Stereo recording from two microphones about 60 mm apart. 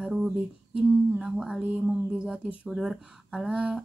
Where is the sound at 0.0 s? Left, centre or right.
Centre.